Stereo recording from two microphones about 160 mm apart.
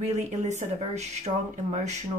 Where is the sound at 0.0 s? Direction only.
45° right (ahead or behind).